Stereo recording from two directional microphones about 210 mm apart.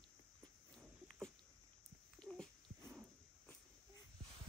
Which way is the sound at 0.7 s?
5° left (ahead or behind).